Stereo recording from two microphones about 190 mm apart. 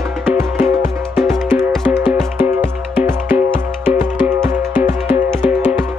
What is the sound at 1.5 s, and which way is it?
Music, centre (ahead or behind).